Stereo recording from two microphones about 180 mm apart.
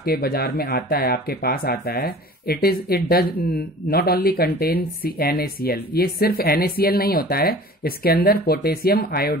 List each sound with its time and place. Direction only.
0.0 s speech: 60° left (ahead or behind)